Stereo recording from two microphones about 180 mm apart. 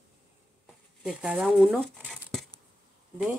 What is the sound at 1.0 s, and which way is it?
Speech, 5° right (ahead or behind).